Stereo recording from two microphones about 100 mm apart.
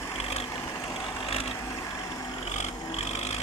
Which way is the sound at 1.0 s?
70° left (ahead or behind).